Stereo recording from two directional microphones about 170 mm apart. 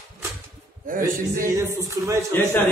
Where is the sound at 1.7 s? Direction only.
20° right (ahead or behind).